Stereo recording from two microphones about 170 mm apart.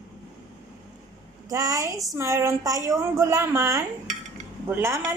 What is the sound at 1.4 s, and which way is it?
A woman's voice, 20° right (ahead or behind).